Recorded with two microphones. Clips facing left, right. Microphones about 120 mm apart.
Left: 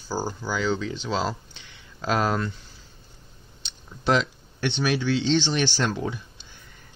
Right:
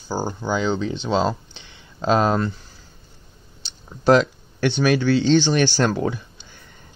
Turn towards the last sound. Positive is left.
turn(degrees=-50)  # may be behind; listen again after turning